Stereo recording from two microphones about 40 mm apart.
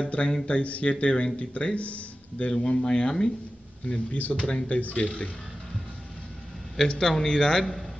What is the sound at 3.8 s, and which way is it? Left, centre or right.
Speech, left.